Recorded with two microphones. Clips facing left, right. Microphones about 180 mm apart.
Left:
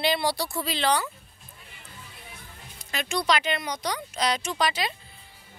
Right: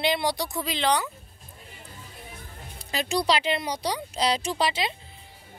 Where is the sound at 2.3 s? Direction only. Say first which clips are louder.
Right 4 dB; 35° right (ahead or behind).